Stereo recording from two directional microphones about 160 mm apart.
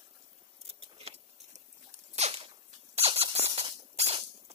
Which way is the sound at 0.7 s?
40° right (ahead or behind).